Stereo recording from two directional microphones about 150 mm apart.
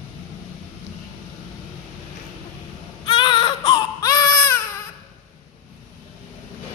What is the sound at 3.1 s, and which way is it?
Baby cry, 30° left (ahead or behind).